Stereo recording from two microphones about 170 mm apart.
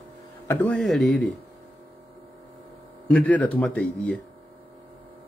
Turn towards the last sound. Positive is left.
turn(degrees=5)  # may be behind; listen again after turning